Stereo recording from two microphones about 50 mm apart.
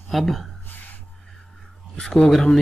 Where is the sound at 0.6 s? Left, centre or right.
Left.